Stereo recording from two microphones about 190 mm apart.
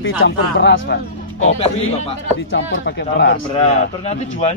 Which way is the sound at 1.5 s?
35° left (ahead or behind).